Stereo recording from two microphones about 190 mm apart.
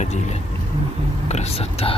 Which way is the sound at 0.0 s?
35° left (ahead or behind).